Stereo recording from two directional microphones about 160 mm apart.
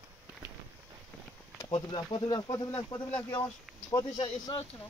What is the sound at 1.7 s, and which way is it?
Speech, 30° left (ahead or behind).